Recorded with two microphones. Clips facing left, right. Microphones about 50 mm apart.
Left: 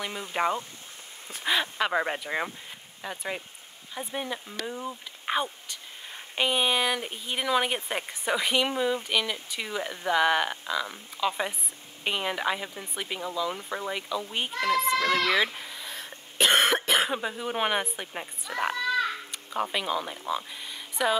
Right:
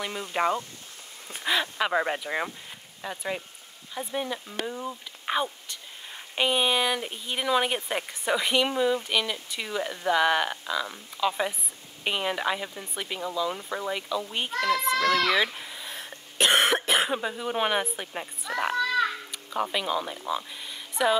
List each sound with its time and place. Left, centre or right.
0.3 s speech: centre
15.0 s speech: left
15.3 s speech: centre
15.9 s cough: right
16.3 s speech: centre
19.5 s speech: centre